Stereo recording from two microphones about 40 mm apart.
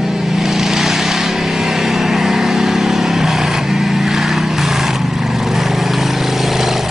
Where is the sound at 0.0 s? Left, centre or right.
Centre.